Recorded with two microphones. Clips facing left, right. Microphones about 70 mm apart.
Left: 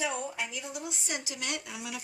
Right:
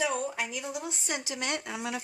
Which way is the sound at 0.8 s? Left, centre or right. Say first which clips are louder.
Right 2 dB; right.